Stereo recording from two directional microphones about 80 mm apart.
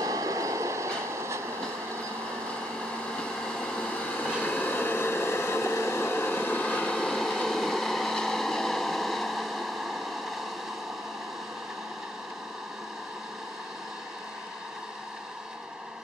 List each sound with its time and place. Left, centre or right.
0.0 s train: right
3.1 s vehicle: centre